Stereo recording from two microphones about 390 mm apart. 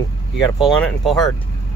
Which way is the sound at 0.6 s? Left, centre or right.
Centre.